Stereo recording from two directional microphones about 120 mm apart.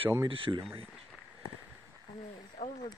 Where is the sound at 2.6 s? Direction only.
70° left (ahead or behind).